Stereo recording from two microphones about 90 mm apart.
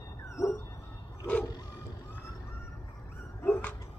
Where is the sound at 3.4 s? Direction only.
20° left (ahead or behind).